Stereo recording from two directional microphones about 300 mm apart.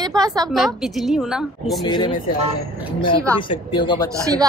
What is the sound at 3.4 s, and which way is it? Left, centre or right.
Speech, centre.